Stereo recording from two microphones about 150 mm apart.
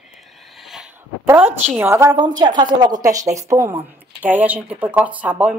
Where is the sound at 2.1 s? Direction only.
30° right (ahead or behind).